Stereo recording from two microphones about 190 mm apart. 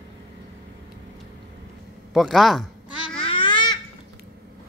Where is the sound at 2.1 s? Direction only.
Centre (ahead or behind).